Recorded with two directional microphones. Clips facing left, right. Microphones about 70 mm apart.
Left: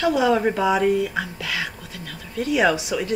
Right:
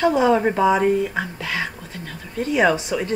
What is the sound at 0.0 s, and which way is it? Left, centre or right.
Speech, right.